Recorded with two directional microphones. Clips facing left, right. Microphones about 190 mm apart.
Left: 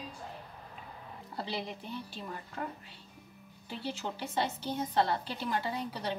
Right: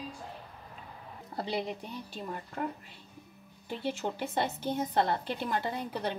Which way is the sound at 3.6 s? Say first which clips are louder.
Right 4 dB; 50° right (ahead or behind).